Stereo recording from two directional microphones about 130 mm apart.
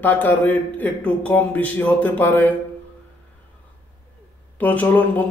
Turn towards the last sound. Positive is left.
turn(degrees=10)  # may be behind; listen again after turning